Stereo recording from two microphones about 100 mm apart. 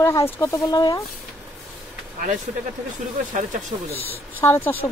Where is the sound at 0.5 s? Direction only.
40° left (ahead or behind).